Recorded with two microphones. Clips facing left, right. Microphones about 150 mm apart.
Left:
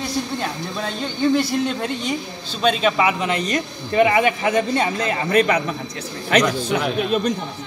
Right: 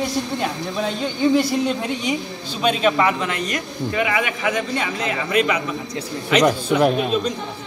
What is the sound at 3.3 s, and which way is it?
Speech, 25° left (ahead or behind).